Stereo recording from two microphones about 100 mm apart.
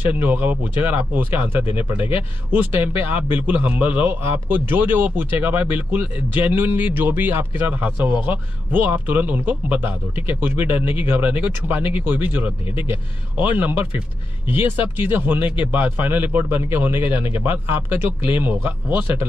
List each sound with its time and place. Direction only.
0.0 s a man's voice: 15° right (ahead or behind)
18.3 s speech: 15° right (ahead or behind)